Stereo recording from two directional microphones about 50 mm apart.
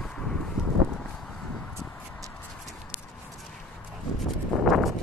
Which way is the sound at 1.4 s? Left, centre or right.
Left.